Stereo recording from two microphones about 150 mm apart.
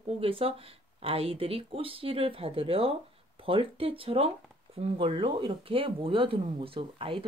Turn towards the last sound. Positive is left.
turn(degrees=-35)  # may be behind; listen again after turning